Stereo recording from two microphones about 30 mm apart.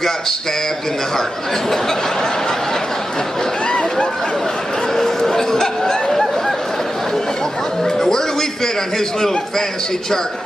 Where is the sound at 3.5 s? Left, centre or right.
Left.